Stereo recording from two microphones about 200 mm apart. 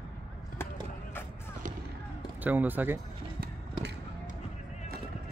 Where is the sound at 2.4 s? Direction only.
10° right (ahead or behind).